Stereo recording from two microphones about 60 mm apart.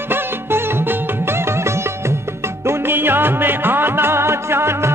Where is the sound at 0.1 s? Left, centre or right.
Right.